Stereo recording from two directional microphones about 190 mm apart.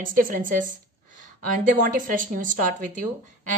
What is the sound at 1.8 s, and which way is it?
A woman's voice, 45° right (ahead or behind).